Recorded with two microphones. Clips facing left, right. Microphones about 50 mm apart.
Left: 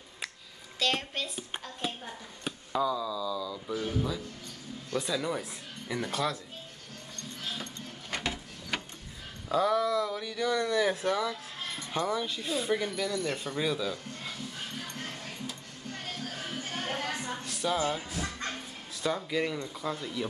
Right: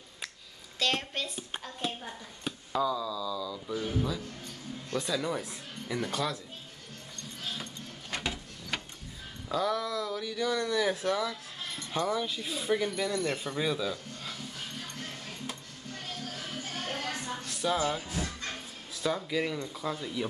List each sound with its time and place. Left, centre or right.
0.7 s hands: centre
4.9 s speech: centre
8.1 s a sound: centre
9.5 s speech: centre
15.9 s music: left
17.5 s music: centre
18.2 s music: left
19.0 s speech: centre